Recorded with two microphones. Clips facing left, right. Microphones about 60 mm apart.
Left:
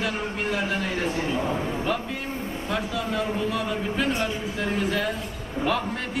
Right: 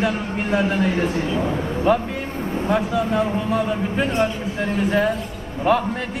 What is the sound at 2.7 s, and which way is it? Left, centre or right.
Speech, right.